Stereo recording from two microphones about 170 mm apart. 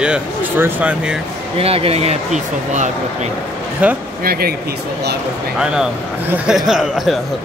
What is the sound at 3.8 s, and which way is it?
Speech, 10° right (ahead or behind).